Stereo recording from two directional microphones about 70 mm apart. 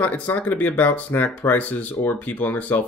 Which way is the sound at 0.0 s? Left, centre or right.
Left.